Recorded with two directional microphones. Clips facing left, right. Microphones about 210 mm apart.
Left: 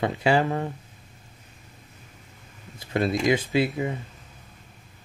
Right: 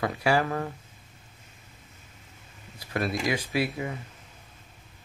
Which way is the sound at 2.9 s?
20° left (ahead or behind).